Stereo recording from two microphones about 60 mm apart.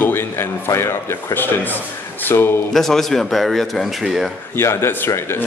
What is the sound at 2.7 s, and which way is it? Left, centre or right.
A man's voice, centre.